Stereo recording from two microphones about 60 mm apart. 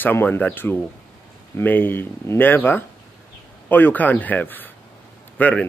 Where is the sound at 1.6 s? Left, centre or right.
Left.